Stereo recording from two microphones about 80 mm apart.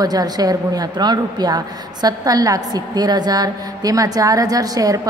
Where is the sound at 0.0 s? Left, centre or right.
Right.